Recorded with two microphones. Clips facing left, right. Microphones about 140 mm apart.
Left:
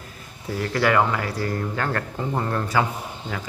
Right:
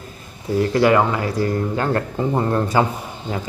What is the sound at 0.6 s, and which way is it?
Speech, 20° right (ahead or behind).